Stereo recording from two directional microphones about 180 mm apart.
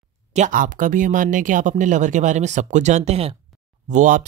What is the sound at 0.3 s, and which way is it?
Speech, 45° right (ahead or behind).